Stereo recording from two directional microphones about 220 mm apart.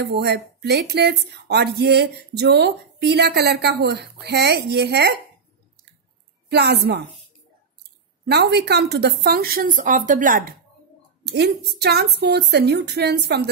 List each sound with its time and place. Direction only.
0.0 s speech: 50° right (ahead or behind)
6.5 s speech: 50° right (ahead or behind)
8.3 s speech: 50° right (ahead or behind)